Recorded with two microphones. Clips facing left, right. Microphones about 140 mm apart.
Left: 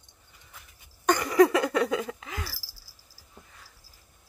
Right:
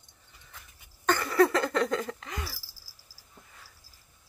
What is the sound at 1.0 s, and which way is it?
Cricket, 15° left (ahead or behind).